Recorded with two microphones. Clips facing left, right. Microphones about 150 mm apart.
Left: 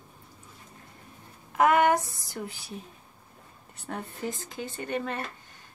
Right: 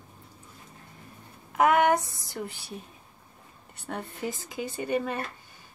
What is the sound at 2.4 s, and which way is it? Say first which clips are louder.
Speech: even; 60° right (ahead or behind).